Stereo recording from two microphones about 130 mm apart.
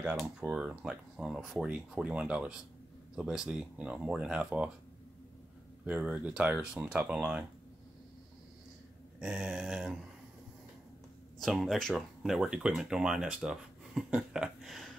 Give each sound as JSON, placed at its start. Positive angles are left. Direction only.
{"t": 0.2, "sound": "speech", "side_deg": -5}
{"t": 5.9, "sound": "speech", "side_deg": -10}
{"t": 9.2, "sound": "speech", "side_deg": -5}
{"t": 11.3, "sound": "speech", "side_deg": 0}